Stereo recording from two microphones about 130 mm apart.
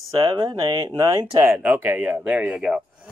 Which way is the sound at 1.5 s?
15° right (ahead or behind).